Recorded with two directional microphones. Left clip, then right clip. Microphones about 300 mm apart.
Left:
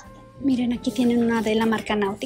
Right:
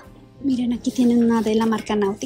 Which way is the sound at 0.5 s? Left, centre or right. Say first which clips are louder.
Right 1 dB; centre.